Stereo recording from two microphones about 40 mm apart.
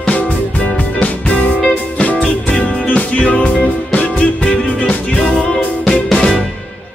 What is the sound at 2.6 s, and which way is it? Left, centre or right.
Music, left.